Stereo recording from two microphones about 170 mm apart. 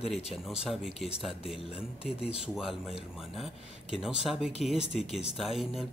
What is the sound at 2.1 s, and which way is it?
Speech, 35° left (ahead or behind).